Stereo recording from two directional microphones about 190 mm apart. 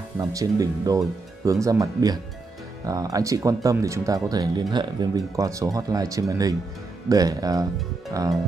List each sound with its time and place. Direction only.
0.2 s speech: 15° right (ahead or behind)